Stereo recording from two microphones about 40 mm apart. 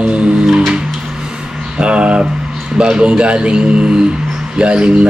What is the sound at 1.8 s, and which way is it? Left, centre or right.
Speech, right.